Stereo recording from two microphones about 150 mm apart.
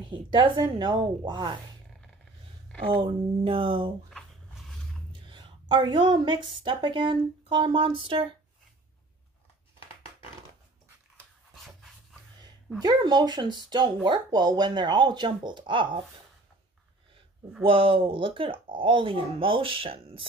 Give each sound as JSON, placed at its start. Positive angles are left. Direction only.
{"t": 0.1, "sound": "a woman's voice", "side_deg": -30}
{"t": 3.0, "sound": "a woman's voice", "side_deg": -35}
{"t": 5.3, "sound": "a woman's voice", "side_deg": -30}
{"t": 11.5, "sound": "dog", "side_deg": 0}
{"t": 12.8, "sound": "a woman's voice", "side_deg": -25}
{"t": 17.6, "sound": "a woman's voice", "side_deg": -35}